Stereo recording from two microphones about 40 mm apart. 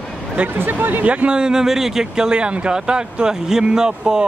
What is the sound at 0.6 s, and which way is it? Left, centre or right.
Speech, right.